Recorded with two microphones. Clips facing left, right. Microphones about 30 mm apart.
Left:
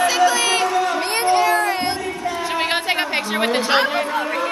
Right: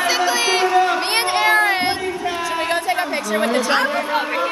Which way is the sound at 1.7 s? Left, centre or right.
Right.